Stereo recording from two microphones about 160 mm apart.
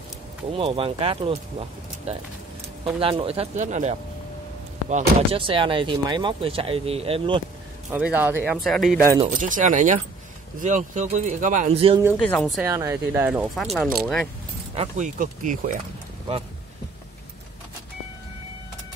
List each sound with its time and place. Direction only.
0.6 s speech: 35° right (ahead or behind)
5.4 s speech: 35° right (ahead or behind)
7.9 s a man's voice: 10° right (ahead or behind)
8.5 s speech: centre (ahead or behind)
9.3 s speech: 55° right (ahead or behind)
11.7 s speech: 35° right (ahead or behind)
12.2 s speech: 5° left (ahead or behind)
12.6 s a man's voice: 15° right (ahead or behind)
13.3 s speech: 5° right (ahead or behind)
14.7 s speech: 40° right (ahead or behind)
15.1 s speech: 55° right (ahead or behind)